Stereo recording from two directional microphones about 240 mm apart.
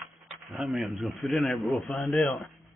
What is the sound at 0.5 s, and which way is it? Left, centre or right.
A man's voice, centre.